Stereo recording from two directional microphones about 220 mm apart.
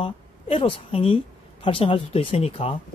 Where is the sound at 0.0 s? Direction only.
25° left (ahead or behind).